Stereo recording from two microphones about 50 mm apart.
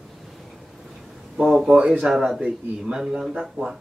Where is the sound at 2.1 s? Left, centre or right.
Centre.